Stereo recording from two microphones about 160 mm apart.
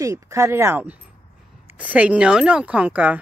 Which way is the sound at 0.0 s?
20° right (ahead or behind).